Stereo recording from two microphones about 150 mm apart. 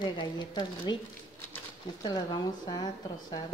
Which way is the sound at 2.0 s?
25° left (ahead or behind).